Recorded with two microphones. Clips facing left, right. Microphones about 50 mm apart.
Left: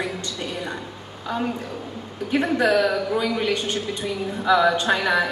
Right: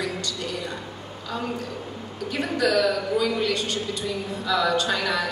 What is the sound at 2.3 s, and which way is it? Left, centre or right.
A woman's voice, left.